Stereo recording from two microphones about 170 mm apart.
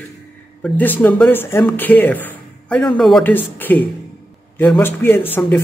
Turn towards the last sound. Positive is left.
turn(degrees=10)  # may be behind; listen again after turning